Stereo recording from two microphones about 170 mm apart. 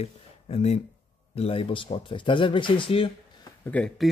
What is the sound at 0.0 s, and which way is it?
Speech, 35° left (ahead or behind).